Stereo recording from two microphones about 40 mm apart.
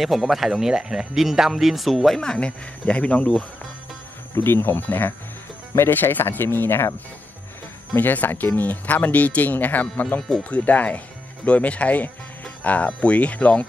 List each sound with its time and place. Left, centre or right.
0.0 s speech: centre
2.1 s speech: left
2.9 s speech: left
4.4 s speech: left
7.9 s speech: left